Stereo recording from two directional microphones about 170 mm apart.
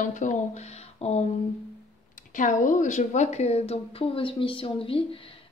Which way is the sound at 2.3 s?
50° left (ahead or behind).